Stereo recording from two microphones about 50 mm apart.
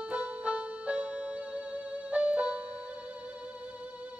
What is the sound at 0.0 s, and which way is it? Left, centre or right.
Music, right.